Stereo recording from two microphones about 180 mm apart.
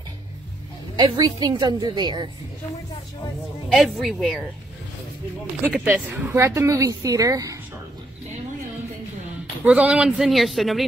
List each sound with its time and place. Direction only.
0.9 s a woman's voice: 20° right (ahead or behind)
3.6 s speech: centre (ahead or behind)
5.9 s speech: 10° right (ahead or behind)
9.7 s speech: 5° right (ahead or behind)